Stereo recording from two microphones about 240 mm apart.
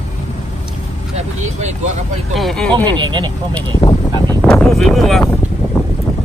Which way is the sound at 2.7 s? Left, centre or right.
Centre.